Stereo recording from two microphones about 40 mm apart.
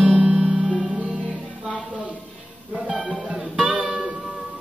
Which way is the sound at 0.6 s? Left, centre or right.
Centre.